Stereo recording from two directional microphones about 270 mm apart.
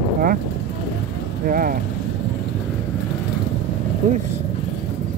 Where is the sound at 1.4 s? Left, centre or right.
Right.